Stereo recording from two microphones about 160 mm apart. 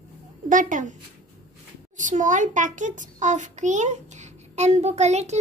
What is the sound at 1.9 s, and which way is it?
A child's voice, 50° right (ahead or behind).